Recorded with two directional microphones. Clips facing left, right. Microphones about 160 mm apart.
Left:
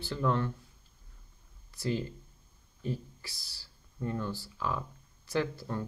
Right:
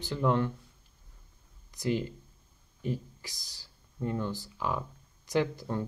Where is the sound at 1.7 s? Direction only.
15° right (ahead or behind).